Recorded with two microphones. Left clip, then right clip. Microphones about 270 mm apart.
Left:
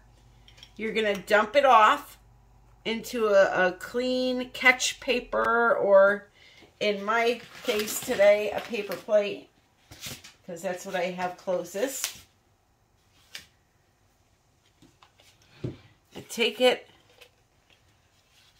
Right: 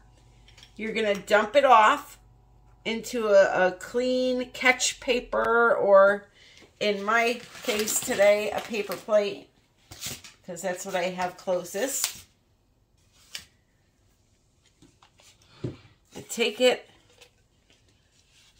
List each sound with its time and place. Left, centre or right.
0.7 s speech: centre
13.3 s a sound: right
16.1 s speech: centre